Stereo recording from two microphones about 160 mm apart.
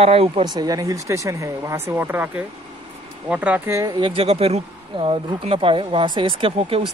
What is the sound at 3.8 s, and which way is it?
Speech, 30° right (ahead or behind).